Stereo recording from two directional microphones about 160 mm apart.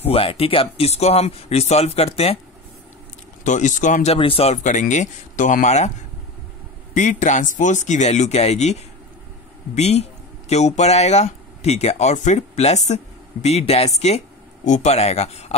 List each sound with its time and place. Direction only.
0.0 s speech: 35° left (ahead or behind)
3.4 s speech: 50° left (ahead or behind)
6.9 s speech: 50° left (ahead or behind)